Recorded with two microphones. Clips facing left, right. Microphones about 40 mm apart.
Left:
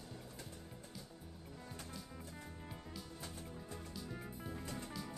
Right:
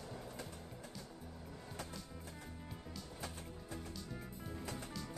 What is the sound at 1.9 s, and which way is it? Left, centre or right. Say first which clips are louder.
Music: even; centre.